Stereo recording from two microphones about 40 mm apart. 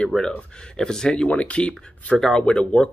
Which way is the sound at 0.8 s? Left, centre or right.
Centre.